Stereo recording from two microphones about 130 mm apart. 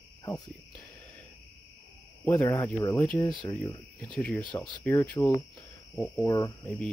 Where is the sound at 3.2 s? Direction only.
30° left (ahead or behind).